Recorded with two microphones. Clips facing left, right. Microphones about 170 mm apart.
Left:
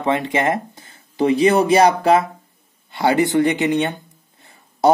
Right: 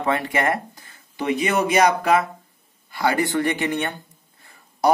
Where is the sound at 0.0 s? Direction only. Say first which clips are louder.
Left 3 dB; 20° left (ahead or behind).